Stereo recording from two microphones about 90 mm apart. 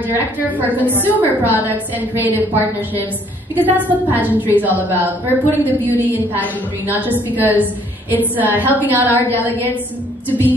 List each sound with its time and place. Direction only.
0.1 s a woman's voice: 20° right (ahead or behind)
0.7 s a woman's voice: 20° left (ahead or behind)
1.1 s a woman's voice: 20° right (ahead or behind)